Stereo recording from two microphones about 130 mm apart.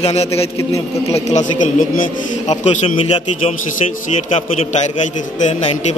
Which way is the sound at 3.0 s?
50° left (ahead or behind).